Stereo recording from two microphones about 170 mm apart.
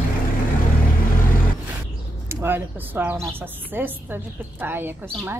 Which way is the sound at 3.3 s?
10° right (ahead or behind).